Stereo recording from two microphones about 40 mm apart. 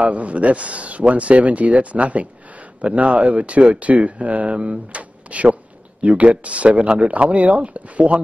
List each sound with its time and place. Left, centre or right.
0.0 s speech: right